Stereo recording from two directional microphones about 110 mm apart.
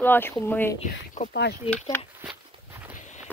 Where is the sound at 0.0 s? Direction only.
20° left (ahead or behind).